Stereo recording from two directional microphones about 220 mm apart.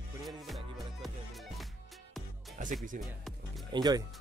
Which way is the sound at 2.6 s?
35° right (ahead or behind).